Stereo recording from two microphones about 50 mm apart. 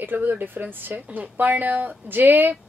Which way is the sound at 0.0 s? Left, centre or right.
Right.